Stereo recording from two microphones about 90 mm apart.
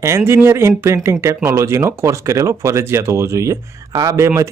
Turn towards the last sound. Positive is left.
turn(degrees=-30)  # may be behind; listen again after turning